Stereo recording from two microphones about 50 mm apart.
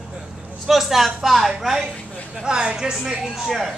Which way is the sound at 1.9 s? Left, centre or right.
Left.